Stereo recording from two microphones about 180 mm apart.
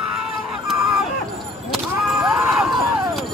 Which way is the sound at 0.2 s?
5° right (ahead or behind).